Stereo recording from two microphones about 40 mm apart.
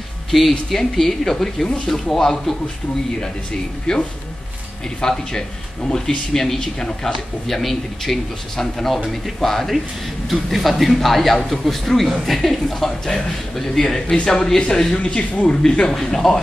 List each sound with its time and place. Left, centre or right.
0.3 s speech: centre
3.9 s a man's voice: left
15.4 s speech: left
16.1 s speech: centre